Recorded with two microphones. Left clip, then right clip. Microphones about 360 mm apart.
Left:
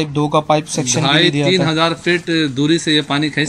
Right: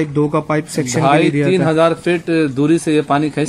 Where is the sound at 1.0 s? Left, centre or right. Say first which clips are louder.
Right 1 dB; centre.